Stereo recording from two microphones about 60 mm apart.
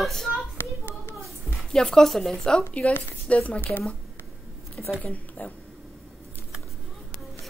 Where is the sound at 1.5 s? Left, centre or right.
Centre.